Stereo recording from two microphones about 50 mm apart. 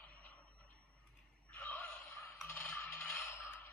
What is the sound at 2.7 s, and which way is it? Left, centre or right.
Coin, left.